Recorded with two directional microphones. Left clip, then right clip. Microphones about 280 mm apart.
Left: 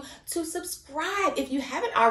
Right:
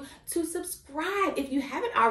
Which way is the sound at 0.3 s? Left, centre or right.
Centre.